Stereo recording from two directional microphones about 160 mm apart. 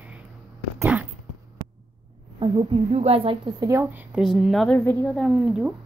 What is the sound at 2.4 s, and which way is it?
A woman's voice, 30° right (ahead or behind).